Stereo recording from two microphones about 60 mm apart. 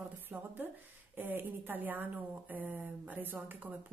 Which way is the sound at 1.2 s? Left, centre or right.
Right.